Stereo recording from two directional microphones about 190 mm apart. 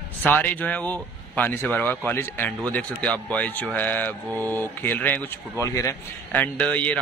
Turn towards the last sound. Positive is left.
turn(degrees=5)  # may be behind; listen again after turning